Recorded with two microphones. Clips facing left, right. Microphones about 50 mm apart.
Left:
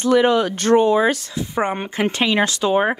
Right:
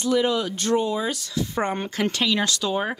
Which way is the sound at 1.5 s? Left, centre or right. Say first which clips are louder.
Left 6 dB; centre.